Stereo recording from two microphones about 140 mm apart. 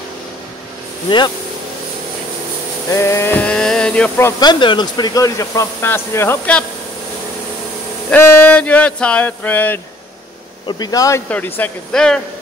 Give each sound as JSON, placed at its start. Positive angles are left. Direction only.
{"t": 2.9, "sound": "sheep", "side_deg": 20}
{"t": 4.4, "sound": "speech", "side_deg": 35}
{"t": 8.1, "sound": "a sound", "side_deg": 15}
{"t": 10.7, "sound": "speech", "side_deg": 30}
{"t": 11.2, "sound": "a sound", "side_deg": 10}
{"t": 11.9, "sound": "speech", "side_deg": 5}